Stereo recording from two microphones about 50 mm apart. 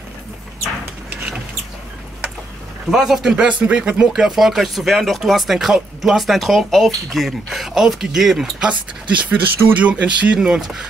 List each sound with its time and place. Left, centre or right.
2.9 s speech: centre
3.3 s speech: centre
4.1 s speech: centre
9.2 s speech: right
10.3 s speech: centre